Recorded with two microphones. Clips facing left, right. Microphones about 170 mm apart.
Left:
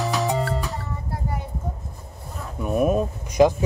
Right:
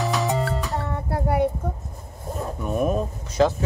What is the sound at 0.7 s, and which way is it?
Child singing, 65° right (ahead or behind).